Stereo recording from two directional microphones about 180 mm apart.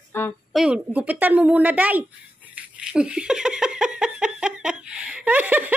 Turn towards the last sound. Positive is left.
turn(degrees=-10)  # may be behind; listen again after turning